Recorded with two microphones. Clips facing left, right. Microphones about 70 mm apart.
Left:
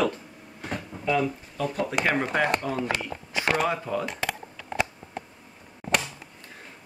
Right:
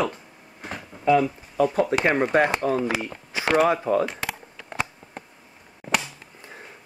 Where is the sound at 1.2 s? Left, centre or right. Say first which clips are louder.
Right 5 dB; centre.